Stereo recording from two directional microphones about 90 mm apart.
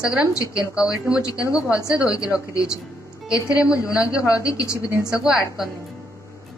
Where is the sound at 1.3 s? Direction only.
40° left (ahead or behind).